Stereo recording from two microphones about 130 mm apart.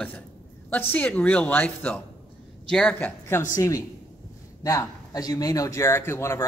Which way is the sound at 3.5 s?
25° left (ahead or behind).